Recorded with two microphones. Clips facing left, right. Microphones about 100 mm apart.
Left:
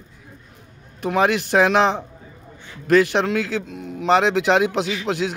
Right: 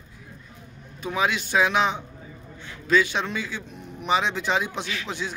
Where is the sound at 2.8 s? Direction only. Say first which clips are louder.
Left 6 dB; 60° left (ahead or behind); by 5.3 s 80° left.